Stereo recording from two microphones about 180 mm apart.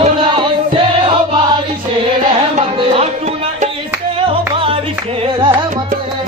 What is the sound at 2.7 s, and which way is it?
Music, 30° right (ahead or behind).